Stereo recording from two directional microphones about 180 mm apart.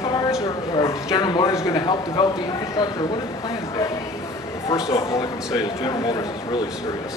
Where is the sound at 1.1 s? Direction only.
25° left (ahead or behind).